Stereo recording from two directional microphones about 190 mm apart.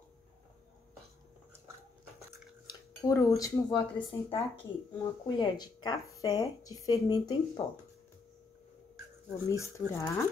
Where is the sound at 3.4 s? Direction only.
25° left (ahead or behind).